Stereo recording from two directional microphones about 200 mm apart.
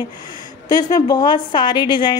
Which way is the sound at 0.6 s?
20° left (ahead or behind).